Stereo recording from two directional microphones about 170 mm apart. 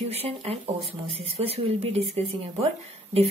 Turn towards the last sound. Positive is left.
turn(degrees=-35)  # may be behind; listen again after turning